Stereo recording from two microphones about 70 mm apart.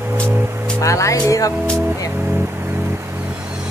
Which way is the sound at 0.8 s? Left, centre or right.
Left.